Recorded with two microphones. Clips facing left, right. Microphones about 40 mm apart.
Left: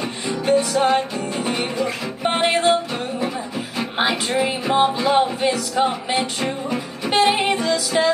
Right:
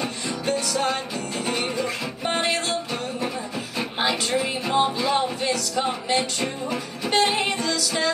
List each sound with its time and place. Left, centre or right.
0.0 s music: left
3.2 s music: centre
4.0 s music: left